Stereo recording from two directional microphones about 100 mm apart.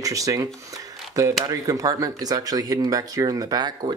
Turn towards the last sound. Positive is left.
turn(degrees=-45)  # may be behind; listen again after turning